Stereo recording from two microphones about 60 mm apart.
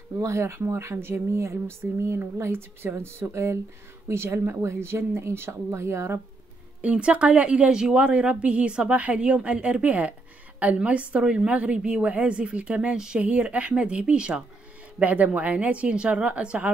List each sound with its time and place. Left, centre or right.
0.2 s speech: right
6.8 s a woman's voice: right